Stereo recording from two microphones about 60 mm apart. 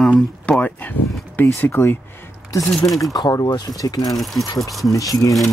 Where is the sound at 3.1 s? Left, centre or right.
Left.